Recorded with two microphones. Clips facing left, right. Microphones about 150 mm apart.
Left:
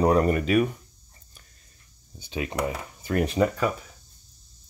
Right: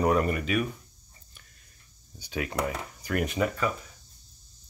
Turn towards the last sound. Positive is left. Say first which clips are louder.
# left 5 dB
turn(degrees=30)  # may be behind; listen again after turning